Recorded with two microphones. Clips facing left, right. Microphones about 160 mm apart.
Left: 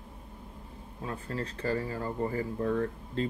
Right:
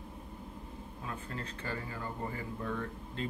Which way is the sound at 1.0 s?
35° left (ahead or behind).